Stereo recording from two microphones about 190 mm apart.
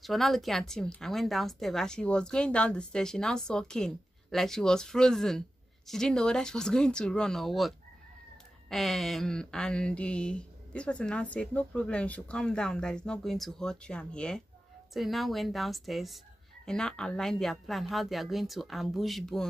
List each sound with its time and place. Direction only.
0.0 s speech: centre (ahead or behind)